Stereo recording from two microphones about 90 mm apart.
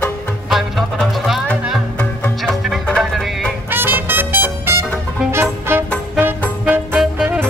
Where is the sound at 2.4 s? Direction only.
Centre (ahead or behind).